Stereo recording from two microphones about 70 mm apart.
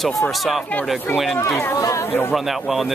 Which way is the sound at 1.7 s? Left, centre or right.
Left.